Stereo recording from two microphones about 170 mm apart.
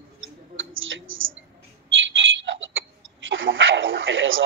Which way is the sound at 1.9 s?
90° right.